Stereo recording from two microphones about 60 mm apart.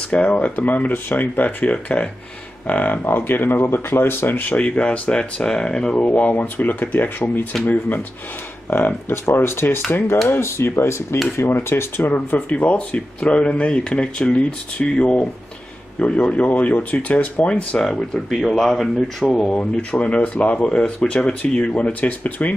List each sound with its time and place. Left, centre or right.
0.1 s speech: left
6.0 s speech: left
11.5 s speech: left; by 17.8 s centre
17.8 s speech: centre
19.3 s speech: centre